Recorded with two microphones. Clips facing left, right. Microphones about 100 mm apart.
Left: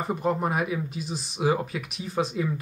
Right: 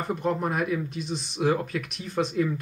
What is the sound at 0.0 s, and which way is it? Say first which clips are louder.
Speech: left 1 dB; centre (ahead or behind).